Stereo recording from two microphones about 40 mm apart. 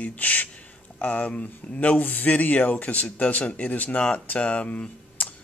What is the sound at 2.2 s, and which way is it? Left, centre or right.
Speech, left.